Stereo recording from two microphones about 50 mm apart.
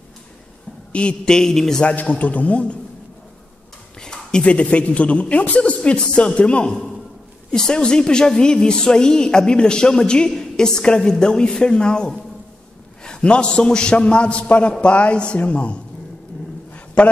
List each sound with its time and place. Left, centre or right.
0.9 s a woman's voice: centre
1.8 s a man's voice: left
4.0 s a man's voice: centre
16.7 s a sound: left